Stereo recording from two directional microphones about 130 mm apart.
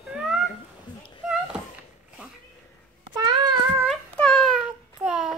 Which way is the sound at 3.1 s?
35° right (ahead or behind).